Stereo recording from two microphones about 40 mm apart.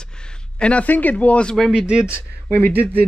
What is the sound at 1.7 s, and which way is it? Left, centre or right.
Speech, right.